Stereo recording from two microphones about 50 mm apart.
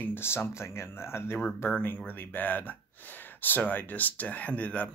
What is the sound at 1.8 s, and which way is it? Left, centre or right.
Speech, left.